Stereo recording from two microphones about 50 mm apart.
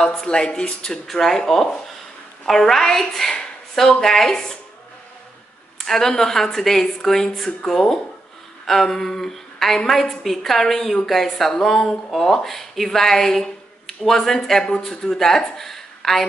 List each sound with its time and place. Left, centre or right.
0.3 s a woman's voice: centre
5.9 s a woman's voice: centre
8.6 s a sound: centre
9.8 s a woman's voice: centre